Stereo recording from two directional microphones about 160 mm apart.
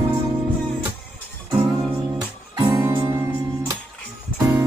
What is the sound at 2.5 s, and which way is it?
Music, 20° right (ahead or behind).